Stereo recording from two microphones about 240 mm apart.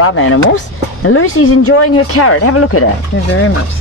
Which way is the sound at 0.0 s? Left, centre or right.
Left.